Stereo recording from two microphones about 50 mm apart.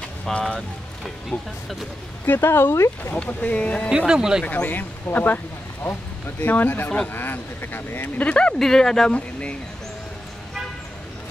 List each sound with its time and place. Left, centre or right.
0.2 s speech: centre
1.3 s speech: left
3.3 s speech: left
3.9 s speech: centre
4.5 s speech: left
6.4 s speech: left
8.2 s speech: left
8.5 s speech: centre
9.1 s speech: left